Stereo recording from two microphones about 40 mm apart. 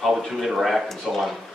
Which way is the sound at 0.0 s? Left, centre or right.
Centre.